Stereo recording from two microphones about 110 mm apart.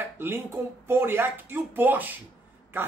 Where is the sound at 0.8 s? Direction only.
20° right (ahead or behind).